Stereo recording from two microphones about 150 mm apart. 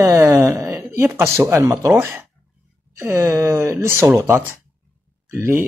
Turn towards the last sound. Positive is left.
turn(degrees=-15)  # may be behind; listen again after turning